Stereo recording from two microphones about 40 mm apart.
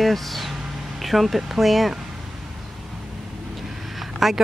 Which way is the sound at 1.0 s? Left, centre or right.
Centre.